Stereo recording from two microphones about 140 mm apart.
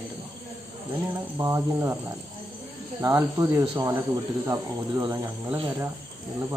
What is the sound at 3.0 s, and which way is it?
Speech, 20° right (ahead or behind).